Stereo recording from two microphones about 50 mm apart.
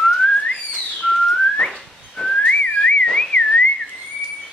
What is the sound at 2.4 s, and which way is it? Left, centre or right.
Whistling, left.